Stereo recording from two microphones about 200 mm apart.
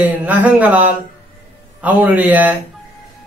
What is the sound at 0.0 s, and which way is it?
Speech, 10° right (ahead or behind).